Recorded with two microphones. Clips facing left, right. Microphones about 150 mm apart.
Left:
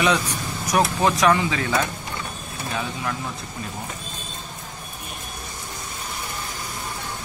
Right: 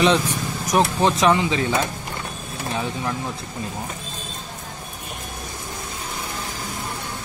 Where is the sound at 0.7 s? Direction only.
25° right (ahead or behind).